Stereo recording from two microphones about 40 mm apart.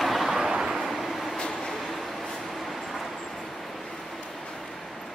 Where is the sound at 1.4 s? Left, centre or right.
Centre.